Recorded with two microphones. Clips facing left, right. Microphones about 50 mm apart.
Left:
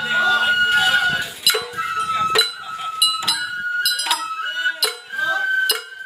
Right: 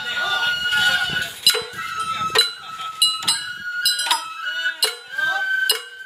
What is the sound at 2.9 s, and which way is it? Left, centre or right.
Goat, centre.